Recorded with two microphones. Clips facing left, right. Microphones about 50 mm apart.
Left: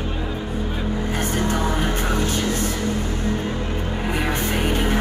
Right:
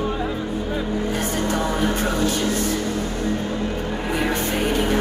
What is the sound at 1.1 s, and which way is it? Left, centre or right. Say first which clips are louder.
Music: left 2 dB; left.